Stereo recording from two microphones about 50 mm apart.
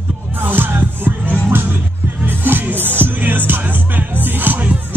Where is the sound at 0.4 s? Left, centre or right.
Right.